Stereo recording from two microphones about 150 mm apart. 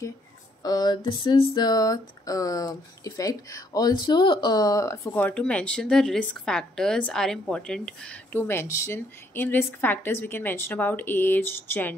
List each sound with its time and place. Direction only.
0.7 s a sound: 25° left (ahead or behind)
4.0 s speech: 30° left (ahead or behind); by 8.4 s 5° left (ahead or behind)
8.4 s speech: 15° left (ahead or behind)